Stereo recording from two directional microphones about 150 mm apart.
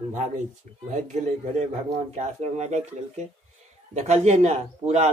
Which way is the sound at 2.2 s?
50° right (ahead or behind).